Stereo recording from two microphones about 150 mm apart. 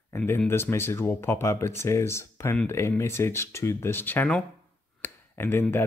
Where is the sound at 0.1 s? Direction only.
15° left (ahead or behind).